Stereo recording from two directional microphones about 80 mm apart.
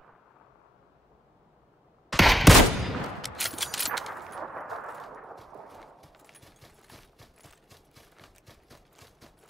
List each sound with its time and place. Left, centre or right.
2.0 s fusillade: centre